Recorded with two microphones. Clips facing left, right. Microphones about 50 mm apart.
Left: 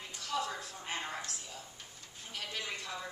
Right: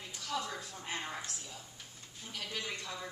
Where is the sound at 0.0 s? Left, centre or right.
Centre.